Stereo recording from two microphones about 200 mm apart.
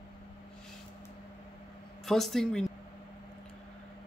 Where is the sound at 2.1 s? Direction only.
Centre (ahead or behind).